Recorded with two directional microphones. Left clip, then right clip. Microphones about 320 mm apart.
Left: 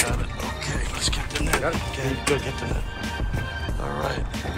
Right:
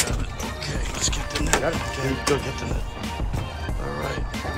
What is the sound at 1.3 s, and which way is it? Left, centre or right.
Music, right.